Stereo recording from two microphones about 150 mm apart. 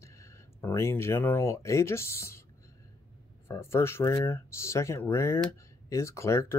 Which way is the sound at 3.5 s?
15° left (ahead or behind).